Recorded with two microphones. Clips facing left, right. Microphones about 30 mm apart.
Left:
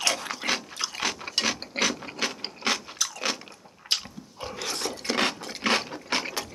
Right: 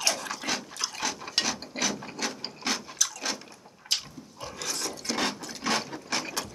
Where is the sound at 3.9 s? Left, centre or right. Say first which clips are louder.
Left 2 dB; left.